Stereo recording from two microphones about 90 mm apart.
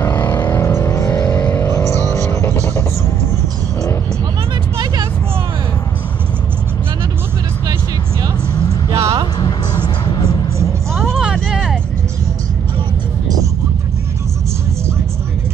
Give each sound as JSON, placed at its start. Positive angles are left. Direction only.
{"t": 0.0, "sound": "vehicle", "side_deg": 25}
{"t": 1.3, "sound": "vehicle", "side_deg": 25}
{"t": 8.9, "sound": "music", "side_deg": -35}
{"t": 9.4, "sound": "music", "side_deg": 55}
{"t": 11.0, "sound": "vehicle", "side_deg": 0}